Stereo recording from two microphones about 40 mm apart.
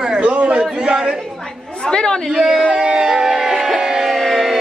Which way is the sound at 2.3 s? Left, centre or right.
Centre.